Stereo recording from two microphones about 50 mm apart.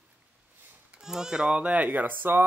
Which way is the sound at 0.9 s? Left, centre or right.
Centre.